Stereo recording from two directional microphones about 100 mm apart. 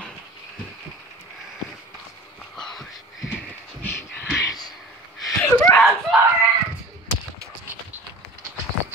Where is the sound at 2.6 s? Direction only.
5° left (ahead or behind).